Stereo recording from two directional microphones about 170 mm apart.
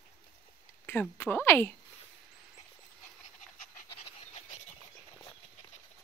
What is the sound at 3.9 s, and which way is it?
Pant, 35° left (ahead or behind).